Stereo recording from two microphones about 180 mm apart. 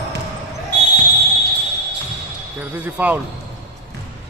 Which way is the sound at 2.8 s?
10° right (ahead or behind).